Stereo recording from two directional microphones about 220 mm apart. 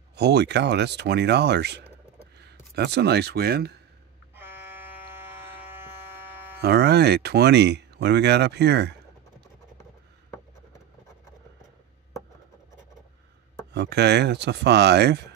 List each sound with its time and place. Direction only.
0.1 s speech: 50° right (ahead or behind)
4.4 s a sound: 10° right (ahead or behind)
6.6 s speech: 50° right (ahead or behind)
13.7 s speech: 50° right (ahead or behind)